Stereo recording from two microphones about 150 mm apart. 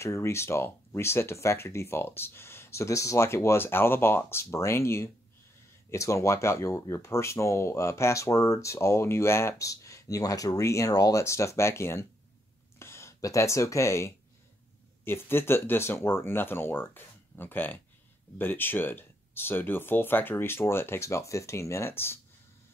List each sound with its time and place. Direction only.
0.0 s speech: 20° left (ahead or behind)